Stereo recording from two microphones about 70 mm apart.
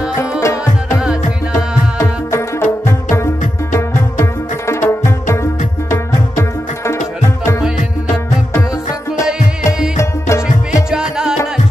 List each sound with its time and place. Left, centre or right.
0.2 s tabla: left
2.0 s music: left
9.9 s music: left
10.9 s music: centre